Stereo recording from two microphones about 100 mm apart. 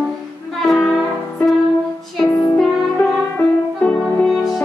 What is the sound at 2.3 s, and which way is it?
Music, 35° left (ahead or behind).